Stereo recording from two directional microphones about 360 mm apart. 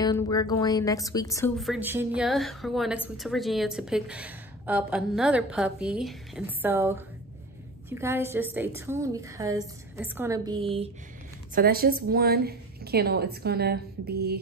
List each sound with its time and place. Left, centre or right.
0.0 s a woman's voice: centre; by 14.4 s right